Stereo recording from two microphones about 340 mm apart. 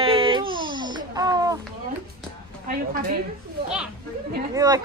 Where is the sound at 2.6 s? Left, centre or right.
Right.